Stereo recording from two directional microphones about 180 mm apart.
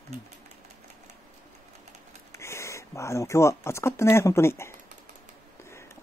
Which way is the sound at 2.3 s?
15° left (ahead or behind).